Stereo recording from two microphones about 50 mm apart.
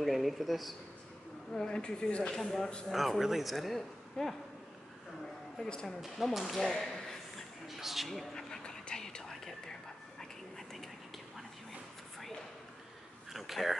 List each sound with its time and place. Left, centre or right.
0.0 s a man's voice: centre
1.5 s speech: centre
2.3 s speech: centre
2.9 s a man's voice: centre
5.7 s speech: centre
5.9 s speech: centre
8.4 s a sound: centre
9.3 s whispering: centre
13.3 s a sound: centre